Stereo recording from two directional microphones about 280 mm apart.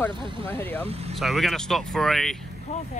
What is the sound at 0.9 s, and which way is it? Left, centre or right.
Vehicle, right.